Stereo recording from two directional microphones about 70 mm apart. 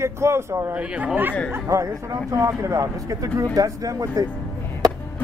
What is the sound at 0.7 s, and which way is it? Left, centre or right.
Speech, centre.